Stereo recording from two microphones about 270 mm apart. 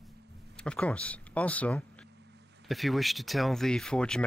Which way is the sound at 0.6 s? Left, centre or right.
Centre.